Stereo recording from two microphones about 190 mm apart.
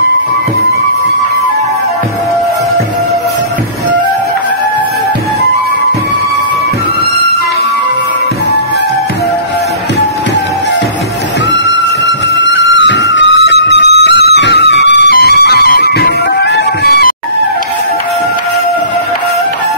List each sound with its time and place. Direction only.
12.4 s music: 70° left (ahead or behind)